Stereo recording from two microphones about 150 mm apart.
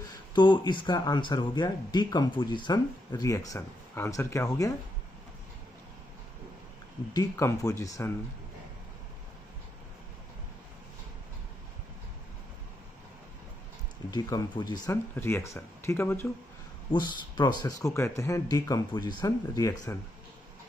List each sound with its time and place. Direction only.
0.3 s speech: 30° left (ahead or behind)
7.2 s speech: 20° left (ahead or behind)
14.1 s speech: 25° left (ahead or behind)
15.1 s speech: 15° left (ahead or behind)
16.9 s speech: 30° left (ahead or behind)